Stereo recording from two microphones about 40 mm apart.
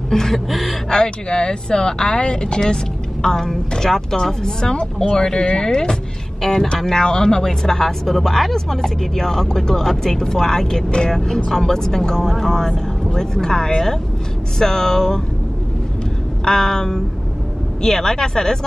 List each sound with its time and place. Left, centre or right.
0.1 s speech: centre
0.5 s speech: centre
0.8 s speech: left
16.4 s speech: centre